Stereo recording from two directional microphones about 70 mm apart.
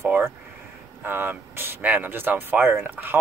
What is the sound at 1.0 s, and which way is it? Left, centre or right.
Speech, right.